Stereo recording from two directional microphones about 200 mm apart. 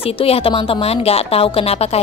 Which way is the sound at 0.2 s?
30° left (ahead or behind).